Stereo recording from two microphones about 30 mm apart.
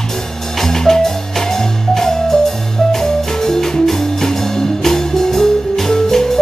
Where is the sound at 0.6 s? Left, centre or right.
Centre.